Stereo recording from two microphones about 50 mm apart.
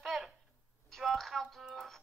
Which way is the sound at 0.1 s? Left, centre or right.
Centre.